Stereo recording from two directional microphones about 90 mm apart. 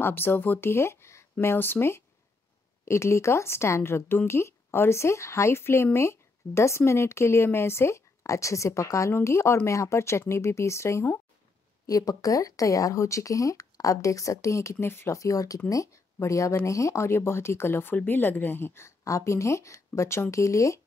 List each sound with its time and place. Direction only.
0.0 s a woman's voice: 25° left (ahead or behind)
11.8 s speech: 45° left (ahead or behind); by 15.1 s 25° left (ahead or behind)
15.1 s speech: 40° left (ahead or behind)